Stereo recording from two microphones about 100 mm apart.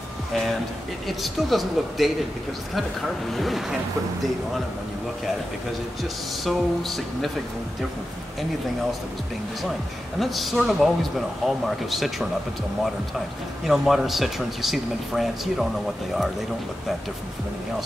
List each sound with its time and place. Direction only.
1.0 s speech: centre (ahead or behind)
3.3 s speech: centre (ahead or behind)
6.4 s speech: centre (ahead or behind)
10.1 s speech: centre (ahead or behind)
13.7 s speech: 5° right (ahead or behind)